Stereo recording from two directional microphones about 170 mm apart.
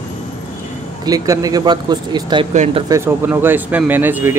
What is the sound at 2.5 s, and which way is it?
Speech, 45° right (ahead or behind).